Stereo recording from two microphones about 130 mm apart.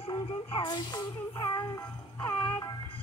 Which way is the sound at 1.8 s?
20° left (ahead or behind).